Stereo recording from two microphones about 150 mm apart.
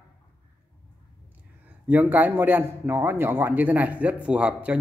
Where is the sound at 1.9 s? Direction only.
10° right (ahead or behind).